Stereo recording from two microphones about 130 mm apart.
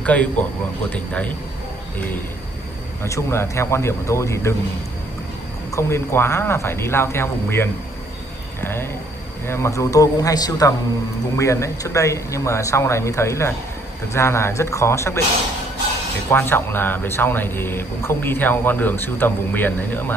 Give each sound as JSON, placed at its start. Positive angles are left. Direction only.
{"t": 0.0, "sound": "speech", "side_deg": 10}
{"t": 3.0, "sound": "speech", "side_deg": 20}
{"t": 5.7, "sound": "speech", "side_deg": 20}
{"t": 16.3, "sound": "speech", "side_deg": 15}